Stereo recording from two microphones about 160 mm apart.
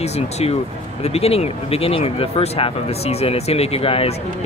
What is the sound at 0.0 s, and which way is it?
Speech, 40° left (ahead or behind).